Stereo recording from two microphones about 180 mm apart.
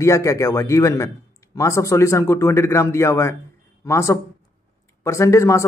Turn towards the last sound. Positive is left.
turn(degrees=15)  # may be behind; listen again after turning